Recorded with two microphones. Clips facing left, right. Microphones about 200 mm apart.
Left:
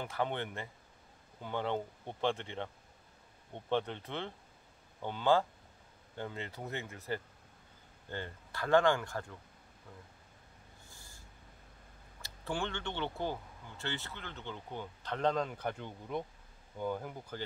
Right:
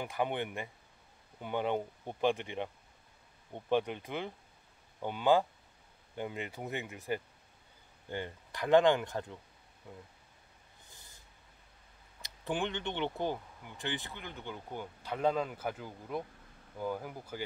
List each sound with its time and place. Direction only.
0.0 s speech: 15° right (ahead or behind)
10.9 s snort: 20° right (ahead or behind)
12.2 s speech: 20° right (ahead or behind)